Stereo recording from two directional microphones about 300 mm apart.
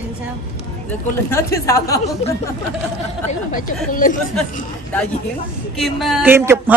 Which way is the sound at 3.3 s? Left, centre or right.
Left.